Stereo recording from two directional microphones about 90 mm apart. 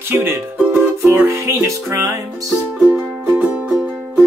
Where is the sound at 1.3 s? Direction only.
30° right (ahead or behind).